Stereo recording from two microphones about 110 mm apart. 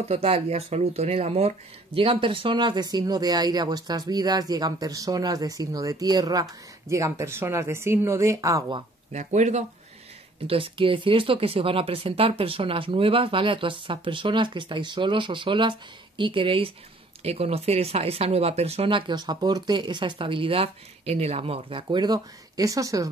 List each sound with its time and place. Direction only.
0.0 s speech: 65° right (ahead or behind)
2.0 s speech: 55° right (ahead or behind); by 8.6 s 30° right (ahead or behind)
9.1 s speech: 90° right
10.4 s speech: 60° right (ahead or behind)
17.2 s speech: 65° right (ahead or behind)
21.8 s speech: 40° right (ahead or behind)